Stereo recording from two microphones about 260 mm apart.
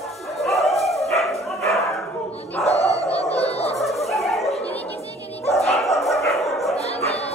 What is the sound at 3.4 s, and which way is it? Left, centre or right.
Fowl, left.